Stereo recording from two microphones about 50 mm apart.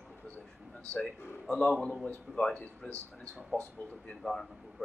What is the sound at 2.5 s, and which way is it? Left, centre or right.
Speech, left.